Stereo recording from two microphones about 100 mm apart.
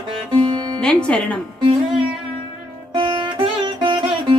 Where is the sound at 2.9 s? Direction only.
50° right (ahead or behind).